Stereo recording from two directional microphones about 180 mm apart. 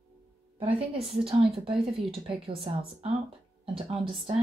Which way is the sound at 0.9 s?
35° right (ahead or behind).